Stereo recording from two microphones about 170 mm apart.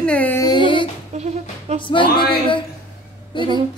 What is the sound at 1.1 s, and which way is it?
Music, 40° right (ahead or behind).